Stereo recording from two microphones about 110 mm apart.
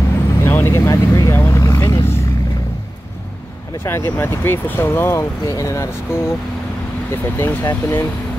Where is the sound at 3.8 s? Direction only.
20° left (ahead or behind).